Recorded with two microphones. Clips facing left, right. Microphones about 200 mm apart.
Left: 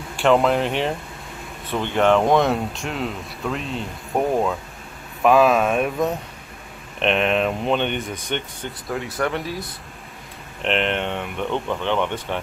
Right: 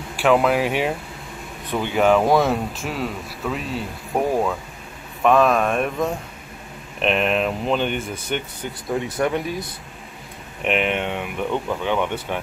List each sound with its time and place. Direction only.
0.1 s speech: centre (ahead or behind)
8.8 s speech: 20° right (ahead or behind)
9.4 s speech: centre (ahead or behind)